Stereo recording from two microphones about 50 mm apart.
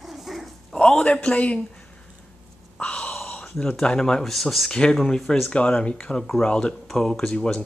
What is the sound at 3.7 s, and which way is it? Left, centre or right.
Speech, centre.